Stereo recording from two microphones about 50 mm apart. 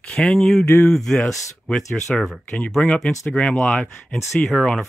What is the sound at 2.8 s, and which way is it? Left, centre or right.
Speech, centre.